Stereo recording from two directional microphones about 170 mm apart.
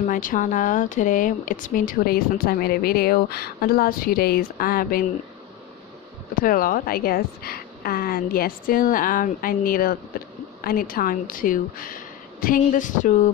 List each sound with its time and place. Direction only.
0.0 s speech: 50° left (ahead or behind)
6.4 s speech: 55° left (ahead or behind)